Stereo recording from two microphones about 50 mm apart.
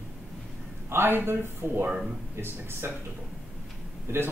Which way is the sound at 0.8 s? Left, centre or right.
Right.